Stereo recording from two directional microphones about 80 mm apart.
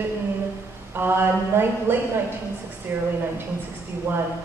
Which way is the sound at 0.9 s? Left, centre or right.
Right.